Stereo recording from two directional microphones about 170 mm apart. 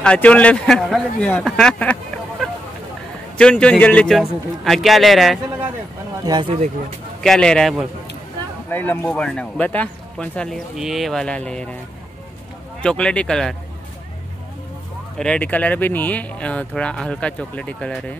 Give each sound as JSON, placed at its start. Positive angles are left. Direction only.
{"t": 0.0, "sound": "a man's voice", "side_deg": 5}
{"t": 3.3, "sound": "a man's voice", "side_deg": 5}
{"t": 6.2, "sound": "speech", "side_deg": -25}
{"t": 7.2, "sound": "a man's voice", "side_deg": 5}
{"t": 12.8, "sound": "a man's voice", "side_deg": 5}
{"t": 15.1, "sound": "speech", "side_deg": 5}